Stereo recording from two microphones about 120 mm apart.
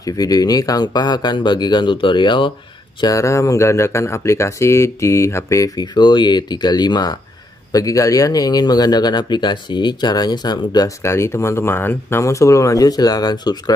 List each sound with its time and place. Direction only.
0.0 s speech: 30° left (ahead or behind)
3.0 s speech: 30° left (ahead or behind)